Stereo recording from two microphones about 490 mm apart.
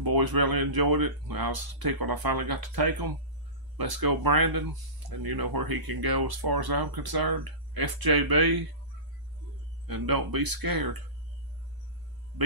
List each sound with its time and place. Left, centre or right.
0.0 s speech: right
9.8 s speech: right